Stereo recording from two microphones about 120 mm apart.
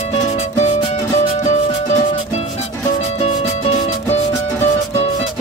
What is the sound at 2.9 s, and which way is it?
Music, 60° left (ahead or behind).